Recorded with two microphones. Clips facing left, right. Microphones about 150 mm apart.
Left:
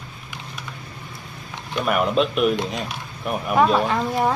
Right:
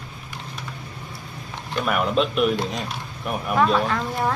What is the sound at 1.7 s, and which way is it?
Speech, 5° left (ahead or behind).